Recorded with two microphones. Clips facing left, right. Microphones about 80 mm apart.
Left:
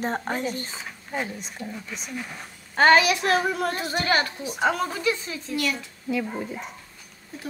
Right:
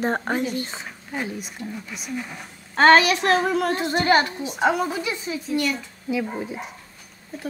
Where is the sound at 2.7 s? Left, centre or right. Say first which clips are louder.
Right 3 dB; right.